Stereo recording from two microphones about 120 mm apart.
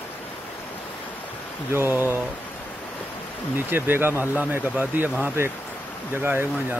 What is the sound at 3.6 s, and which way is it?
Speech, 15° right (ahead or behind).